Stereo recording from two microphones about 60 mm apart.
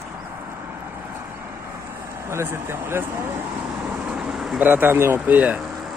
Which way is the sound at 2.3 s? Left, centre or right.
Right.